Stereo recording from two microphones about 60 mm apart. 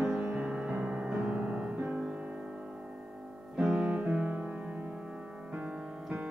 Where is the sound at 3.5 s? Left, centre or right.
Centre.